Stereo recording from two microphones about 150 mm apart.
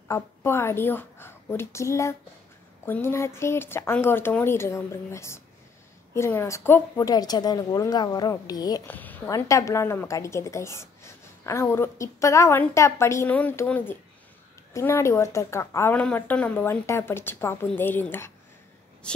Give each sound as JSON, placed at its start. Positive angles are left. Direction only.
{"t": 0.1, "sound": "a woman's voice", "side_deg": 15}
{"t": 8.8, "sound": "a woman's voice", "side_deg": 10}